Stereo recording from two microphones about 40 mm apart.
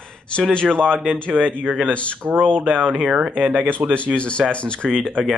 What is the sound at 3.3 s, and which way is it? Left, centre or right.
Speech, right.